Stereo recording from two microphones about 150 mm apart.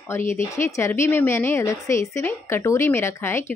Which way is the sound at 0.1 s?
15° left (ahead or behind).